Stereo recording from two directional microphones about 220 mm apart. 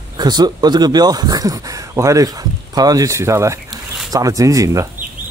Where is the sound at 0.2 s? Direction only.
20° right (ahead or behind).